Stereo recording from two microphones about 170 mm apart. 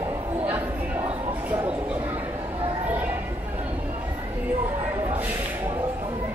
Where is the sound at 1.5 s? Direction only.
10° right (ahead or behind).